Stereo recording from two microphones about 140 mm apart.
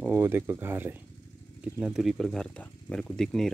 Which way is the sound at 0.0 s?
15° right (ahead or behind).